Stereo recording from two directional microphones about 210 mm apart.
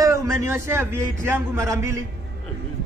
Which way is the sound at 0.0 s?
15° right (ahead or behind).